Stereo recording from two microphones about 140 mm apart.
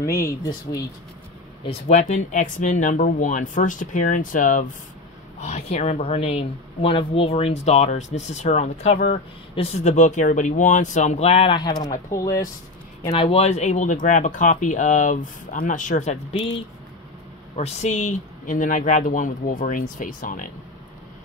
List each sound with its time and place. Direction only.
0.0 s speech: 20° left (ahead or behind)
1.7 s speech: 55° left (ahead or behind)
5.4 s speech: 50° left (ahead or behind); by 12.4 s 20° left (ahead or behind)
13.1 s speech: 45° left (ahead or behind)
17.6 s speech: 50° left (ahead or behind); by 20.4 s 70° left (ahead or behind)